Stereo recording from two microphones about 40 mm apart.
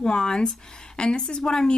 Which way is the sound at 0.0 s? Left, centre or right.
Centre.